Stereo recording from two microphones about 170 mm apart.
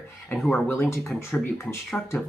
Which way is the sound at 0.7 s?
15° left (ahead or behind).